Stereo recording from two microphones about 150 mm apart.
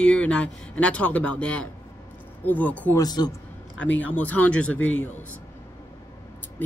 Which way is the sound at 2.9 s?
25° left (ahead or behind).